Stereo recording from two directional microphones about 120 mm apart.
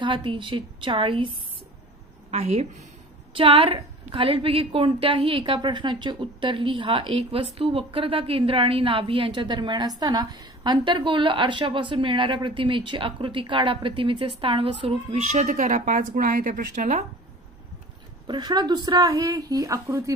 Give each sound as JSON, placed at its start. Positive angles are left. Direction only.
{"t": 0.0, "sound": "a woman's voice", "side_deg": -45}
{"t": 2.3, "sound": "a woman's voice", "side_deg": -65}
{"t": 3.3, "sound": "a woman's voice", "side_deg": -50}
{"t": 15.0, "sound": "a woman's voice", "side_deg": -75}
{"t": 18.2, "sound": "a woman's voice", "side_deg": -40}